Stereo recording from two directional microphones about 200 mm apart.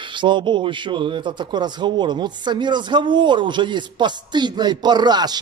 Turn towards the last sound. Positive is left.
turn(degrees=-20)  # may be behind; listen again after turning